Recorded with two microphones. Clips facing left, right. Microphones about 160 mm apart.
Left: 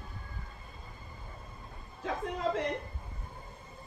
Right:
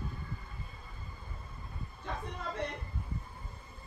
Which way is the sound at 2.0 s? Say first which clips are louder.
Left 8 dB; 90° left.